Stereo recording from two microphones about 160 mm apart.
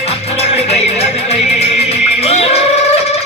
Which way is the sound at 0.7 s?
40° left (ahead or behind).